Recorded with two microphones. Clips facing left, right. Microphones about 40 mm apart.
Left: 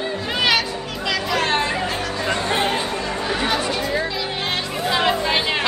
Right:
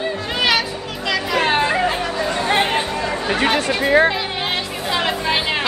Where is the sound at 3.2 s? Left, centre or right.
Right.